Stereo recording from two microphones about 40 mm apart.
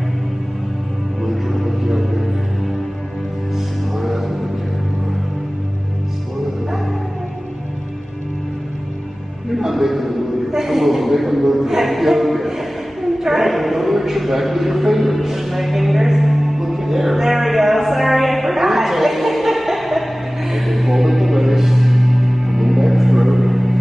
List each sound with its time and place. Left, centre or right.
1.2 s music: centre
3.5 s music: centre
9.6 s music: centre
10.5 s a sound: centre